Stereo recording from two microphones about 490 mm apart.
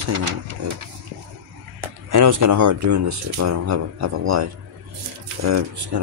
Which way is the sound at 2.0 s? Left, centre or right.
Right.